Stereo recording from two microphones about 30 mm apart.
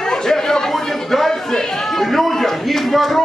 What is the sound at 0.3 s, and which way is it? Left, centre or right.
Chatter, centre.